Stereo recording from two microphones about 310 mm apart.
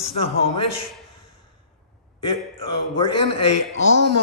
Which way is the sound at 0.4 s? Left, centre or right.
Left.